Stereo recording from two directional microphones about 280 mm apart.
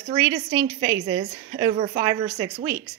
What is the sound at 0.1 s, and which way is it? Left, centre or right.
A woman's voice, centre.